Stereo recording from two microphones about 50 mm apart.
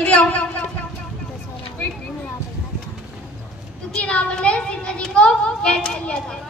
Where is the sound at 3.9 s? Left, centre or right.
Left.